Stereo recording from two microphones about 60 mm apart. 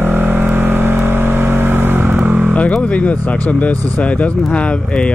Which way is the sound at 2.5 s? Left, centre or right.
Left.